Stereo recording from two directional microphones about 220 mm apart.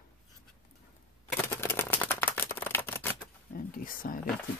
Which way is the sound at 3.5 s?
40° left (ahead or behind).